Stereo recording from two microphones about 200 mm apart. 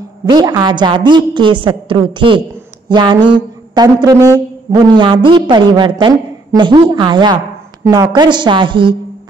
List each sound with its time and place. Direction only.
0.3 s speech: 20° right (ahead or behind)